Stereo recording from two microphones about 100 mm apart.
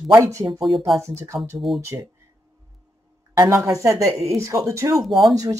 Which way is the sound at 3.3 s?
30° right (ahead or behind).